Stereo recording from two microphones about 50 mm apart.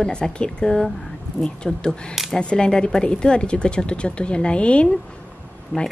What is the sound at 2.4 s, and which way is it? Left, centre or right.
Speech, centre.